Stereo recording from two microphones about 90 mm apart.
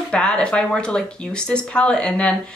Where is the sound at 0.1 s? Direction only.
10° left (ahead or behind).